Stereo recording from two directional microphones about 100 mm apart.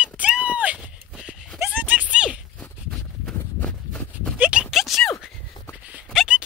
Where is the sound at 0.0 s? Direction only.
10° right (ahead or behind).